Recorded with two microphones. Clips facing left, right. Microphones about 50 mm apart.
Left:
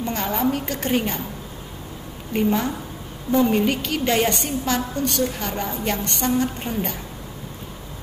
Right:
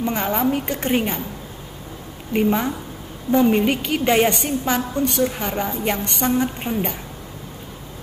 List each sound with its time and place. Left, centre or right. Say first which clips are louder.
0.0 s a woman's voice: right 2 dB; centre
2.3 s a woman's voice: right 2 dB; right